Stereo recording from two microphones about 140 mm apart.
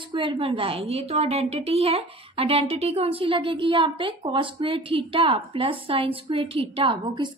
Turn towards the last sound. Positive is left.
turn(degrees=-35)  # may be behind; listen again after turning